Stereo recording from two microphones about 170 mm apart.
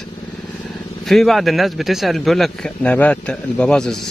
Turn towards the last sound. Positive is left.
turn(degrees=5)  # may be behind; listen again after turning